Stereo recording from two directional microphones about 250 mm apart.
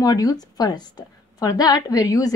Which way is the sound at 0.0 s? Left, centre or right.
Centre.